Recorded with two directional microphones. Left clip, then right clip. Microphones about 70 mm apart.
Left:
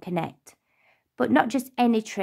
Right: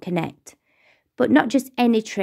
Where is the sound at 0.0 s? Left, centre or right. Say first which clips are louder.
Right 3 dB; right.